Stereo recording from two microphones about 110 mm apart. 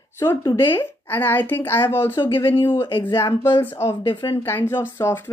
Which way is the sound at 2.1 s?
50° left (ahead or behind).